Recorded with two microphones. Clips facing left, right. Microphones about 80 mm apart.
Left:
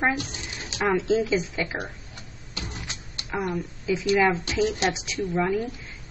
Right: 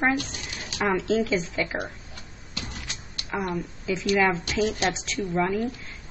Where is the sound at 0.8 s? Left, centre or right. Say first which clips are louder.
Left 1 dB; centre.